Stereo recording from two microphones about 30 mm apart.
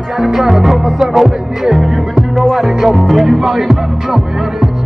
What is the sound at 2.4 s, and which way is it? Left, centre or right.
Music, centre.